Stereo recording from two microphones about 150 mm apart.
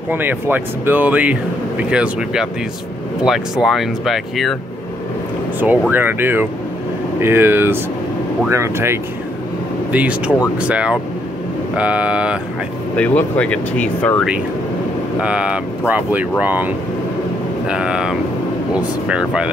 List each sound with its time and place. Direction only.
0.1 s speech: 15° right (ahead or behind)
5.6 s speech: 10° right (ahead or behind)
12.9 s speech: 10° left (ahead or behind)
15.1 s speech: 5° right (ahead or behind)